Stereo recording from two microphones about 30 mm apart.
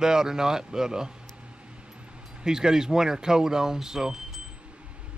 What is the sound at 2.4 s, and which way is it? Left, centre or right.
Speech, centre.